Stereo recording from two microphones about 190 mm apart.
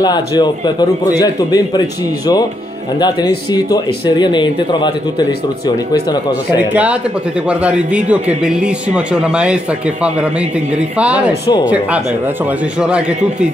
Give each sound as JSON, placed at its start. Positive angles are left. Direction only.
{"t": 0.0, "sound": "speech", "side_deg": 20}
{"t": 3.0, "sound": "speech", "side_deg": 20}
{"t": 6.7, "sound": "a man's voice", "side_deg": -5}
{"t": 11.0, "sound": "speech", "side_deg": -5}